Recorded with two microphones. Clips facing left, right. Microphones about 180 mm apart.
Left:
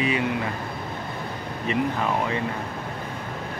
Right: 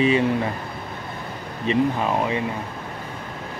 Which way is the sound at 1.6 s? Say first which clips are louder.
Right 4 dB; 20° right (ahead or behind).